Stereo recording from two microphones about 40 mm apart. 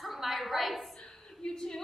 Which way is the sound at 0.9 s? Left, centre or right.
Centre.